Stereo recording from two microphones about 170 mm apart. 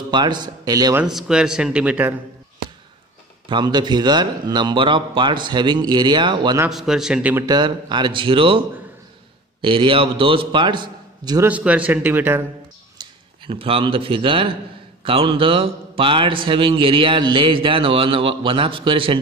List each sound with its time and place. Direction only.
0.1 s a man's voice: 25° right (ahead or behind)
0.9 s speech: 5° right (ahead or behind)
3.4 s a man's voice: 25° right (ahead or behind)
6.7 s speech: centre (ahead or behind)
7.4 s a man's voice: 25° right (ahead or behind)
11.4 s speech: 10° right (ahead or behind)
12.9 s a man's voice: 30° right (ahead or behind)